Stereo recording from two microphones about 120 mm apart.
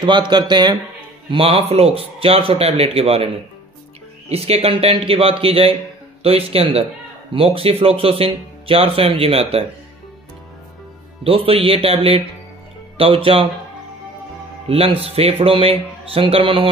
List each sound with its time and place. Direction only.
0.0 s speech: 40° right (ahead or behind)
1.3 s a man's voice: 50° right (ahead or behind)
4.3 s a man's voice: 55° right (ahead or behind)
11.2 s a man's voice: 50° right (ahead or behind)
14.7 s a man's voice: 55° right (ahead or behind)